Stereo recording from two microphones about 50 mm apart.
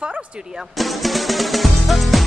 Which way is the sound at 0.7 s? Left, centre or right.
Centre.